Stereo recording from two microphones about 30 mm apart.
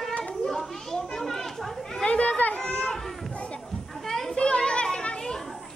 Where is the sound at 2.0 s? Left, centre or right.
Left.